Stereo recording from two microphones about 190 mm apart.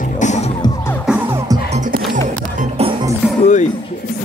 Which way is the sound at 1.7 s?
40° right (ahead or behind).